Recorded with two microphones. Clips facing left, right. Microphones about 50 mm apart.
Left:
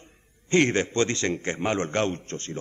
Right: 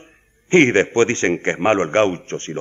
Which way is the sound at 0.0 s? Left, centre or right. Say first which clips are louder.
Right 6 dB; right.